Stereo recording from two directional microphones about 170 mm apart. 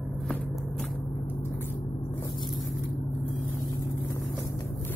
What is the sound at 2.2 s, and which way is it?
Vehicle, 25° left (ahead or behind).